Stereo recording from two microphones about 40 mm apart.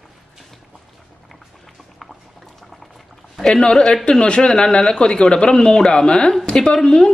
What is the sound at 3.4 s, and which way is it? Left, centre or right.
A man's voice, centre.